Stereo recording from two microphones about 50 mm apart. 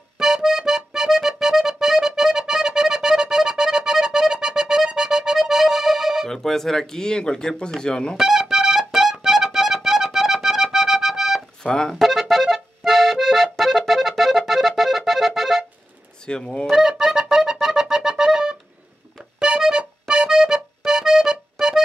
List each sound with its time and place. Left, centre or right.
0.2 s music: centre
6.2 s speech: centre
8.2 s music: centre
11.6 s speech: centre
11.9 s accordion: centre
16.3 s speech: centre
16.7 s music: centre